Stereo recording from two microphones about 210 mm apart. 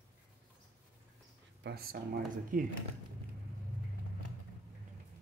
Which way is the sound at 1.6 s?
50° right (ahead or behind).